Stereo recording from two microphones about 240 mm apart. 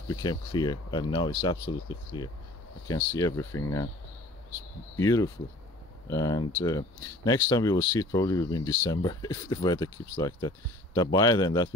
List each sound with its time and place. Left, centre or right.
0.1 s speech: centre
4.9 s speech: centre